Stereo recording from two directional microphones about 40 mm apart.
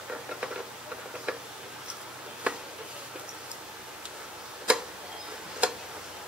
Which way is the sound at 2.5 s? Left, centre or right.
Right.